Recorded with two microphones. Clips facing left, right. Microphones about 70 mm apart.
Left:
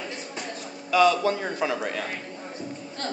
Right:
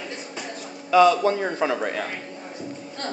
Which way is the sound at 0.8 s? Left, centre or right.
Right.